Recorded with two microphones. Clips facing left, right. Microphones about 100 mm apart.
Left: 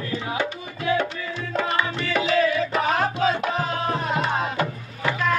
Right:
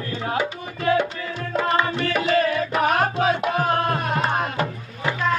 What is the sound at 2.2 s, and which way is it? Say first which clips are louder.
Music: left 1 dB; 50° right (ahead or behind).